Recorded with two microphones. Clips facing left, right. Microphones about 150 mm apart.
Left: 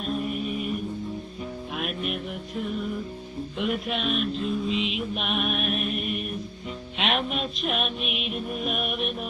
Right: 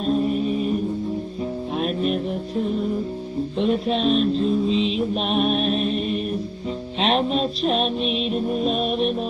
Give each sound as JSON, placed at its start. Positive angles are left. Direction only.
{"t": 0.0, "sound": "music", "side_deg": -30}
{"t": 1.8, "sound": "music", "side_deg": -35}